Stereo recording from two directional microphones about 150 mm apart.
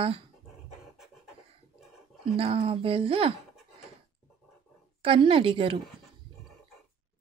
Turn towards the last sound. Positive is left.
turn(degrees=-35)  # may be behind; listen again after turning